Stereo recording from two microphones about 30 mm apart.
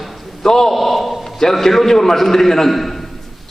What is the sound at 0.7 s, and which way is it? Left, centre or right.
A man's voice, centre.